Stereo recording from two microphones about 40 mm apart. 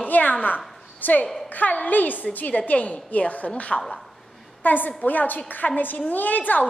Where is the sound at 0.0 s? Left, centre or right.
Left.